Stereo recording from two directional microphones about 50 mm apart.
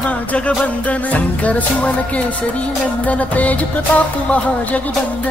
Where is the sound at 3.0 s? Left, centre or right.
Left.